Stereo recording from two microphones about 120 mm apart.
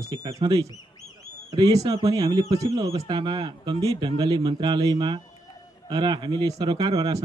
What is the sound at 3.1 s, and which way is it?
Speech, 45° right (ahead or behind).